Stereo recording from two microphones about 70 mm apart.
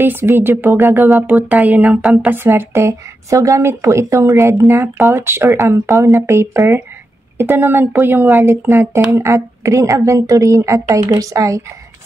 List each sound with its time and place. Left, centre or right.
0.0 s a woman's voice: right
1.2 s speech: right
2.2 s a woman's voice: right
9.3 s a woman's voice: right